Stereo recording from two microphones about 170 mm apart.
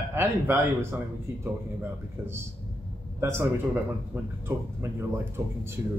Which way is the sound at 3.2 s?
15° right (ahead or behind).